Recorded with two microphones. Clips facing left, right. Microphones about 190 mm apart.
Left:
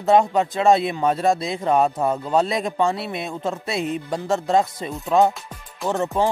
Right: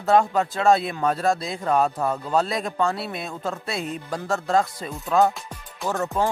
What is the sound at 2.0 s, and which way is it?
Speech, 20° left (ahead or behind).